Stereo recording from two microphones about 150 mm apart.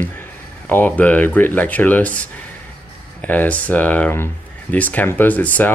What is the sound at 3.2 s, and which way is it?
Speech, 10° left (ahead or behind).